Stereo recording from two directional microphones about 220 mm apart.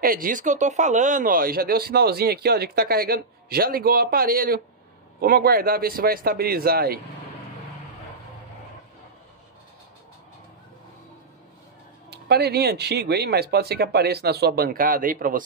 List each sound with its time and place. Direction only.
0.0 s speech: 40° right (ahead or behind)
12.1 s speech: 45° right (ahead or behind)